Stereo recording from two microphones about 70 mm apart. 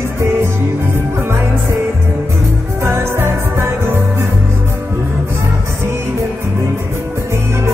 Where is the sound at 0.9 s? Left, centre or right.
Right.